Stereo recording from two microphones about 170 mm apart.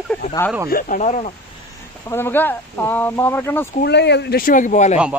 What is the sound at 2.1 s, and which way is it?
Speech, 10° left (ahead or behind).